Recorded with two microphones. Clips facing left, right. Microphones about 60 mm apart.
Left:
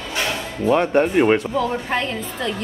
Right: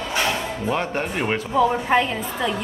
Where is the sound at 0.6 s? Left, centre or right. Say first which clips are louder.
Left 10 dB; centre.